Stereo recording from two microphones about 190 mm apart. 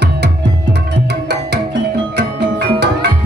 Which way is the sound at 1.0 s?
65° right (ahead or behind).